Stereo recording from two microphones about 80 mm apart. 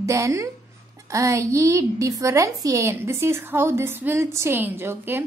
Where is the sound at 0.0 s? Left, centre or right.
Right.